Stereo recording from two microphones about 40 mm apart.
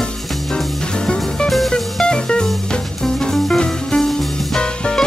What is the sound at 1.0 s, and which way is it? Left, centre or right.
Music, left.